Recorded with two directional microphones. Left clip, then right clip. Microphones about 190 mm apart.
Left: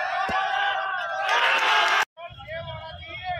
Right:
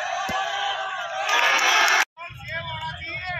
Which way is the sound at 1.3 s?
Centre (ahead or behind).